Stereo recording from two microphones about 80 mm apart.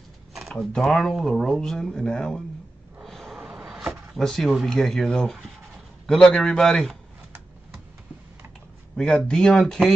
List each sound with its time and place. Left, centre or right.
0.3 s speech: centre
3.0 s snort: centre
3.5 s a sound: centre
4.2 s speech: centre
8.9 s speech: centre